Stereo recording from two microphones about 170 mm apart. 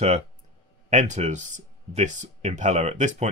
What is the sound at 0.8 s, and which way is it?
Speech, 45° right (ahead or behind).